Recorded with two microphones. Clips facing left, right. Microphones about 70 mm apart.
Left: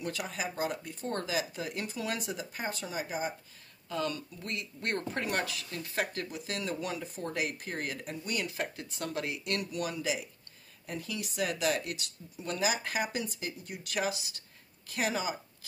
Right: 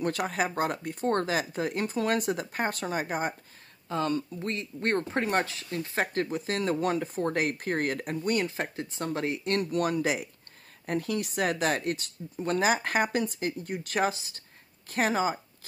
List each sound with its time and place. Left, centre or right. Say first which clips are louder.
0.0 s speech: right 8 dB; right
3.9 s speech: right 6 dB; right